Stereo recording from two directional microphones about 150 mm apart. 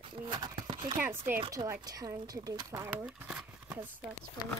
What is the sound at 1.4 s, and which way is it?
Speech, 25° right (ahead or behind).